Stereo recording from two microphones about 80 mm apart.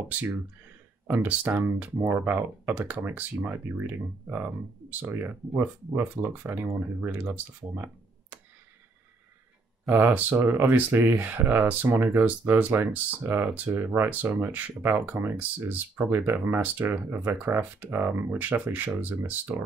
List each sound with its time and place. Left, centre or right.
1.2 s speech: centre
9.9 s speech: right